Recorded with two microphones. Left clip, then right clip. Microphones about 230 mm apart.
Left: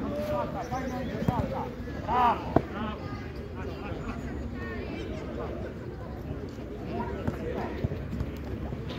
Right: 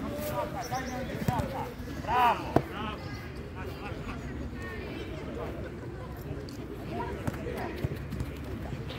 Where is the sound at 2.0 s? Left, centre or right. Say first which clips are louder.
Left 1 dB; right.